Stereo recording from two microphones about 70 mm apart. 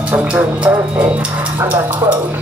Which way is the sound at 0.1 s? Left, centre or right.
Right.